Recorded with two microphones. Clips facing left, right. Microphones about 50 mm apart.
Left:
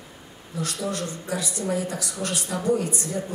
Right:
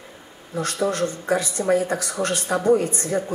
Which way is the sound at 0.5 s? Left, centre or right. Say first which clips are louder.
Right 6 dB; right.